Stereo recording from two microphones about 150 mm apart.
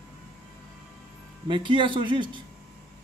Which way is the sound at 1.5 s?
35° right (ahead or behind).